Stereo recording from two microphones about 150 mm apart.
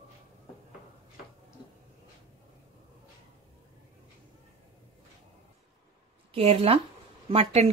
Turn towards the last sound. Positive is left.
turn(degrees=-40)  # may be behind; listen again after turning